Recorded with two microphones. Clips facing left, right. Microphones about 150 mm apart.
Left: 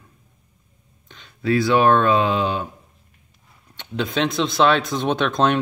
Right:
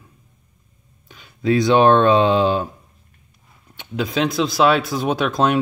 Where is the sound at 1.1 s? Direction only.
10° right (ahead or behind).